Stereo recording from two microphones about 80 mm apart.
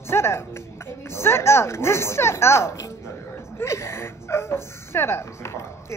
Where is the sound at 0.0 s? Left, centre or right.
Left.